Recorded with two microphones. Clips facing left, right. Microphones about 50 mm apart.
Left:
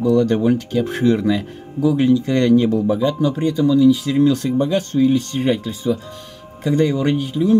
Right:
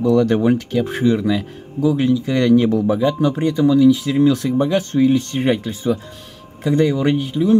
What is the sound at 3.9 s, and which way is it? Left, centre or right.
Speech, centre.